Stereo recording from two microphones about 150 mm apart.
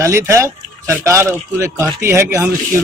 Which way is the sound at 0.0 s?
20° right (ahead or behind).